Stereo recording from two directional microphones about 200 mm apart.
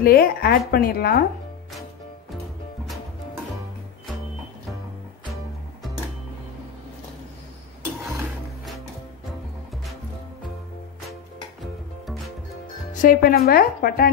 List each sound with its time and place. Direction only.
0.0 s speech: 50° left (ahead or behind)
12.9 s speech: 45° left (ahead or behind)